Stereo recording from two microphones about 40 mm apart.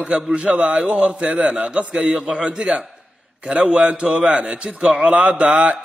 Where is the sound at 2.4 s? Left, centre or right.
Right.